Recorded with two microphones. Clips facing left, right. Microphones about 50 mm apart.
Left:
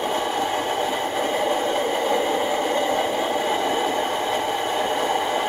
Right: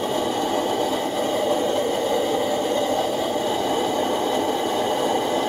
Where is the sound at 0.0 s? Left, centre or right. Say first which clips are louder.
Even; left.